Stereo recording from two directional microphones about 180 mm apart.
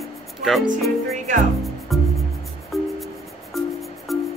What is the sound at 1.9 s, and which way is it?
Music, centre (ahead or behind).